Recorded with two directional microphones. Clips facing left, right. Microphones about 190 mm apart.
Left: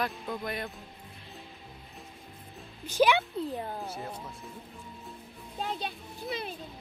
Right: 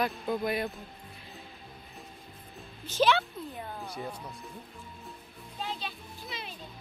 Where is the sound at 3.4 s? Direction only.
35° left (ahead or behind).